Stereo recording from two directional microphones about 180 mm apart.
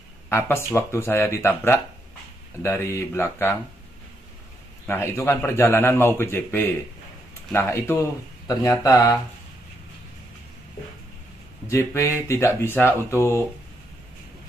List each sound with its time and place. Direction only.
0.3 s a man's voice: 15° left (ahead or behind)
4.8 s a man's voice: 10° left (ahead or behind)
11.7 s a man's voice: 15° left (ahead or behind)